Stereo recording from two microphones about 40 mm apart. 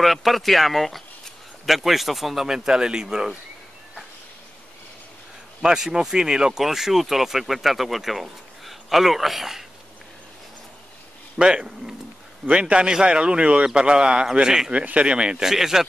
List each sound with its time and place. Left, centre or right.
0.0 s speech: centre
5.6 s speech: centre
6.6 s speech: centre
11.3 s speech: centre
14.7 s speech: right
15.4 s speech: centre